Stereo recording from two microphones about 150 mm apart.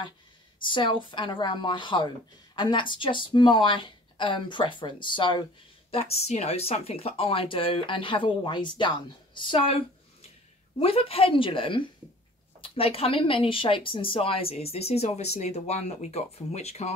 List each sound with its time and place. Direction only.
0.6 s a woman's voice: 30° left (ahead or behind)
5.9 s a woman's voice: 45° left (ahead or behind)